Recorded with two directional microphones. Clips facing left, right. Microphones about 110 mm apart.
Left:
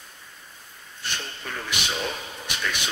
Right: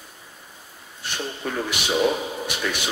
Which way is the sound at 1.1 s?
10° right (ahead or behind).